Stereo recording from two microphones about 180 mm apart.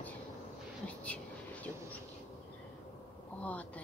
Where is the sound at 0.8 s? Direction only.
10° left (ahead or behind).